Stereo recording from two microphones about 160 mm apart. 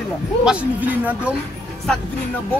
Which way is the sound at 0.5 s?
10° right (ahead or behind).